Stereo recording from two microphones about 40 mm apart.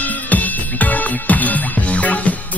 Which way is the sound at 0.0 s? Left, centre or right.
Left.